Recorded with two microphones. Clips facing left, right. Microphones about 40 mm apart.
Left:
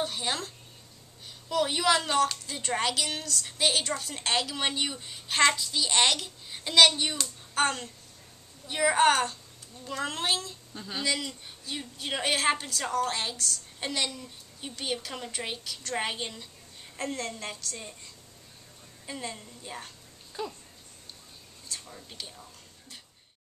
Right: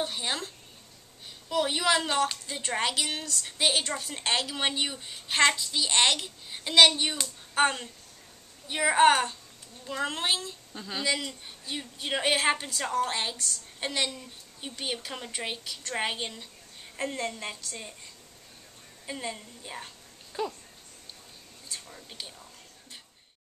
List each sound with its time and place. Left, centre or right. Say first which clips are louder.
0.0 s a woman's voice: even; centre
1.5 s speech: left 1 dB; centre
19.0 s speech: right 2 dB; centre
21.6 s speech: even; centre